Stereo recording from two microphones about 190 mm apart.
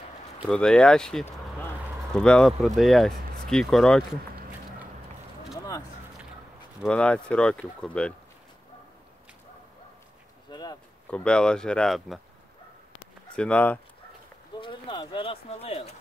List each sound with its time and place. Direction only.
0.4 s speech: 5° left (ahead or behind)
6.8 s speech: 5° left (ahead or behind)
10.5 s a sound: 20° left (ahead or behind)
11.1 s speech: 5° left (ahead or behind)
13.4 s speech: 5° left (ahead or behind)
14.5 s speech: 25° left (ahead or behind)